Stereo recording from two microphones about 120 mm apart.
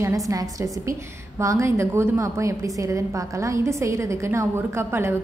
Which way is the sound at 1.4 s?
25° right (ahead or behind).